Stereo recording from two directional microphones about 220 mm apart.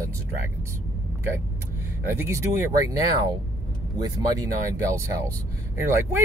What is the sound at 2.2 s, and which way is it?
Speech, 10° right (ahead or behind).